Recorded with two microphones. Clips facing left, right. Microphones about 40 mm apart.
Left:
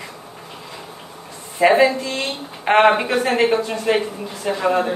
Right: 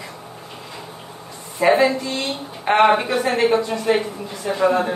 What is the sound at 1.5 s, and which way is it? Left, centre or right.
Speech, left.